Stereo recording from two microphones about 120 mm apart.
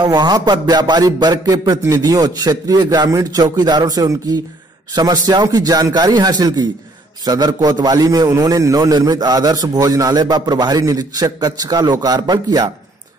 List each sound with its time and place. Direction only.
0.0 s a man's voice: 35° right (ahead or behind)